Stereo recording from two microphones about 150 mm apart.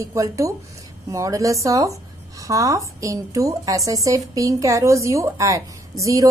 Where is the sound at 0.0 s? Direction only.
20° right (ahead or behind).